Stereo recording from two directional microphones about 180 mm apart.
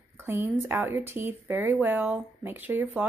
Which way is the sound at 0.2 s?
15° right (ahead or behind).